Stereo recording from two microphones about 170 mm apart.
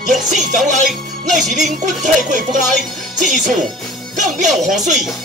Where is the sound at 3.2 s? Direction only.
Centre (ahead or behind).